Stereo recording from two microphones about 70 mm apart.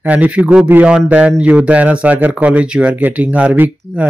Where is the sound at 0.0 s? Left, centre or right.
Centre.